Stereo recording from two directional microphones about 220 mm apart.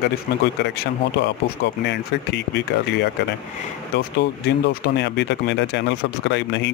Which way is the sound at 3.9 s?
45° left (ahead or behind).